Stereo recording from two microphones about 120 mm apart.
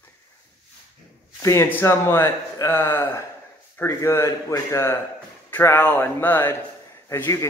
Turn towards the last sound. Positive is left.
turn(degrees=20)  # may be behind; listen again after turning